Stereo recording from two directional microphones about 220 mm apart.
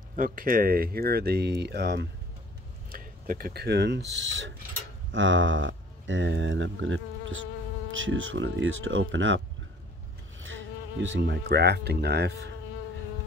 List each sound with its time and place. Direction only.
0.1 s speech: 40° right (ahead or behind); by 9.4 s 60° right (ahead or behind)
10.4 s speech: 60° right (ahead or behind)